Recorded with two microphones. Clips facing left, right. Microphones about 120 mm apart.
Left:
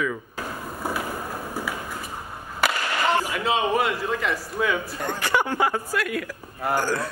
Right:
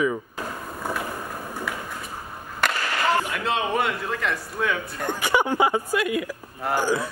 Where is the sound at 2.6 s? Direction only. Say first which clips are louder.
Left 1 dB; 5° left (ahead or behind).